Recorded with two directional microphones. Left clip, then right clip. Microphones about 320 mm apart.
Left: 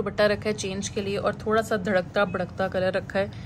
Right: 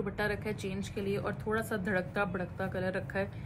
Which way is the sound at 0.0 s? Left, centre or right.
Left.